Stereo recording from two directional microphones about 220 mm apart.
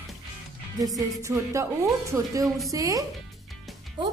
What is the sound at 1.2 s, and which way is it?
A woman's voice, 15° right (ahead or behind).